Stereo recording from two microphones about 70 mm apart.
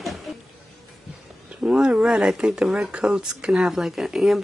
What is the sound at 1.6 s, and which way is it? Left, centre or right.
Speech, centre.